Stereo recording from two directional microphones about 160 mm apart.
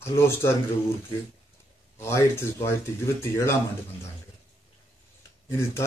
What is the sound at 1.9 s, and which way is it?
Speech, 15° left (ahead or behind).